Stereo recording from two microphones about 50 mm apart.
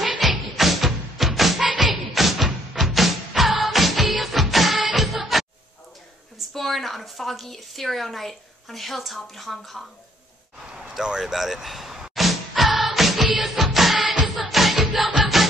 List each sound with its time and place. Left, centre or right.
0.2 s music: centre
6.5 s a woman's voice: centre
11.0 s music: centre
13.9 s music: right
14.2 s music: centre